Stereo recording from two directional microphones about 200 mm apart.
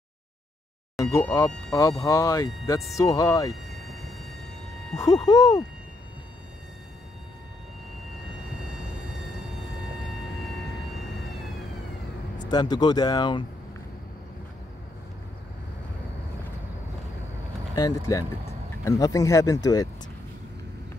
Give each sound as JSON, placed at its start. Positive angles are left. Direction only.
{"t": 0.9, "sound": "speech", "side_deg": 15}
{"t": 3.7, "sound": "a sound", "side_deg": 0}
{"t": 4.9, "sound": "speech", "side_deg": 20}
{"t": 12.4, "sound": "speech", "side_deg": 20}
{"t": 17.7, "sound": "speech", "side_deg": 15}